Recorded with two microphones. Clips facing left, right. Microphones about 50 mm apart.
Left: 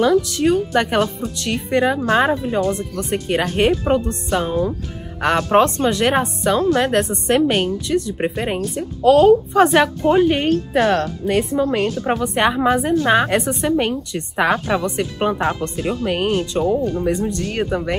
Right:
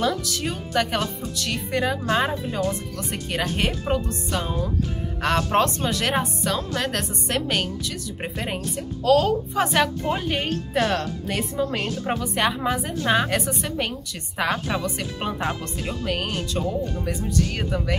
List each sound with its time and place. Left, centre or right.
0.0 s speech: centre
12.4 s speech: centre
13.4 s speech: left
13.7 s speech: centre
16.6 s speech: left
17.5 s speech: centre